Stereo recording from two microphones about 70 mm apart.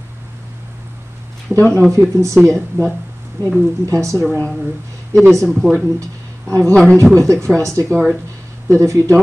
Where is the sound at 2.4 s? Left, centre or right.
Centre.